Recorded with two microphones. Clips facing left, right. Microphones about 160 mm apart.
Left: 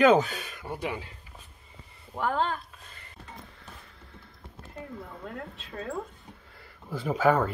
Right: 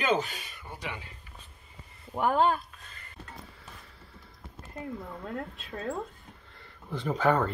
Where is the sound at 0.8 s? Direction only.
40° left (ahead or behind).